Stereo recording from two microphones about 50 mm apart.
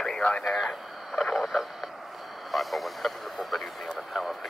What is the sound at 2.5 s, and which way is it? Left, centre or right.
Speech, centre.